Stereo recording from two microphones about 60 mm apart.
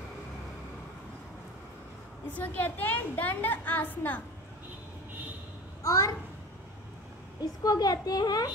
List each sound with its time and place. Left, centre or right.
2.3 s a woman's voice: left
5.8 s a child's voice: left
7.6 s a woman's voice: left